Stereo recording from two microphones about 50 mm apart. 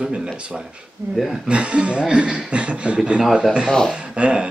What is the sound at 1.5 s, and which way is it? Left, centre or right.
Speech, right.